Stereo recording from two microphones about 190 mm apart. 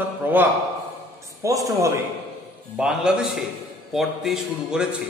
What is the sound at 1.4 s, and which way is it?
Speech, 20° right (ahead or behind).